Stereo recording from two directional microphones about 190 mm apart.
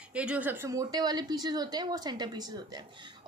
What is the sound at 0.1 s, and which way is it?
A woman's voice, 5° right (ahead or behind).